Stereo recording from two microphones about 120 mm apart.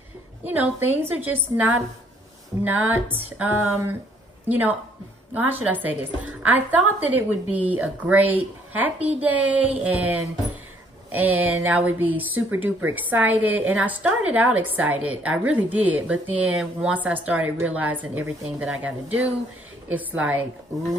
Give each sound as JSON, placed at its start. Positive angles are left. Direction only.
{"t": 0.4, "sound": "speech", "side_deg": -15}
{"t": 4.5, "sound": "speech", "side_deg": -15}
{"t": 11.1, "sound": "speech", "side_deg": -15}